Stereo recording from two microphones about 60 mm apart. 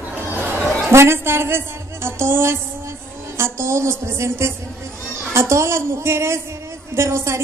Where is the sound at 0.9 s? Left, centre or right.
Right.